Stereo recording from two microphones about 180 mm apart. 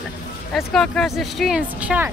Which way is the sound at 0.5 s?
Centre (ahead or behind).